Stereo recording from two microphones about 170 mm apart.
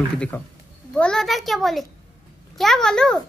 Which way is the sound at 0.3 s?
10° left (ahead or behind).